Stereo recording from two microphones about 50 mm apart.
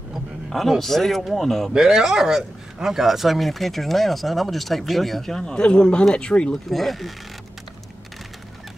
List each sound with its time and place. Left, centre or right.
0.1 s speech: centre
1.7 s speech: centre
5.5 s speech: centre
6.7 s speech: centre